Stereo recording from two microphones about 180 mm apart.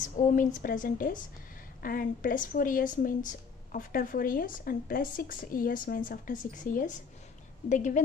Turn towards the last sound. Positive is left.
turn(degrees=45)  # may be behind; listen again after turning